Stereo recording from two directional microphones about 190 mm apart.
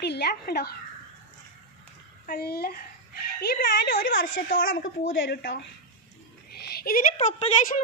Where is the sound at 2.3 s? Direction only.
55° left (ahead or behind).